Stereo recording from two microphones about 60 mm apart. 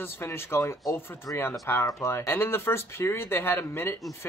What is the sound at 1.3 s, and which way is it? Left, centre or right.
Speech, left.